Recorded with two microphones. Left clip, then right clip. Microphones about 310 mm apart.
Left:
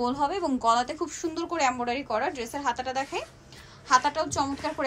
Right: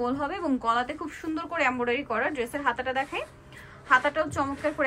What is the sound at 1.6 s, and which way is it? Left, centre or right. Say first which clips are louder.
A woman's voice: right 1 dB; centre.